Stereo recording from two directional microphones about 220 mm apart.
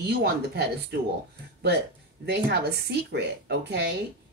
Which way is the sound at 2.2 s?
50° right (ahead or behind).